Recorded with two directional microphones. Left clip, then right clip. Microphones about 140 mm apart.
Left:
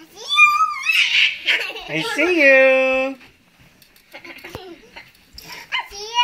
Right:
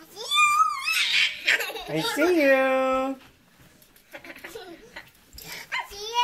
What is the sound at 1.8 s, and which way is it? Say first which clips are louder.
Speech: left 5 dB; 10° right (ahead or behind).